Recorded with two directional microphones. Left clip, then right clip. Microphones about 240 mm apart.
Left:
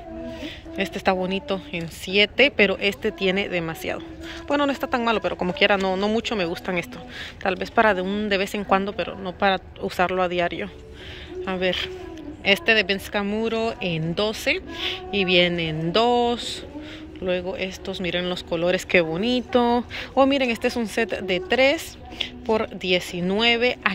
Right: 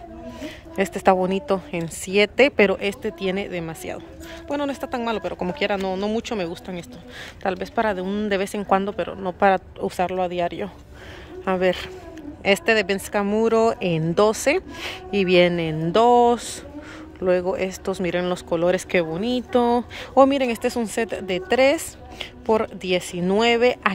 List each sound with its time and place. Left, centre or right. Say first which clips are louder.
0.9 s speech: right 5 dB; centre